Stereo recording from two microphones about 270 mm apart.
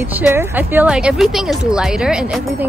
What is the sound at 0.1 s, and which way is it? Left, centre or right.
Speech, centre.